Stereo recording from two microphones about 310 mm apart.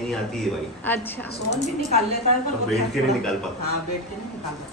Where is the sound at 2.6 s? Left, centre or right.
Centre.